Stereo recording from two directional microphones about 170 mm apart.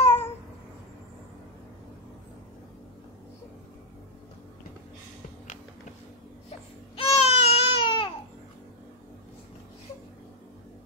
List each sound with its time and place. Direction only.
0.0 s babbling: 15° left (ahead or behind)
7.0 s baby cry: 35° left (ahead or behind)